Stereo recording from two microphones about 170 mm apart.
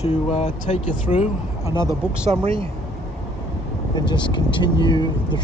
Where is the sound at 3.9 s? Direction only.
25° left (ahead or behind).